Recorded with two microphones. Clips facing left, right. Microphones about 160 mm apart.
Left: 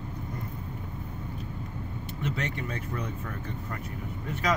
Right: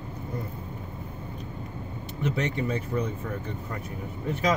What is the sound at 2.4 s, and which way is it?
Speech, 20° right (ahead or behind).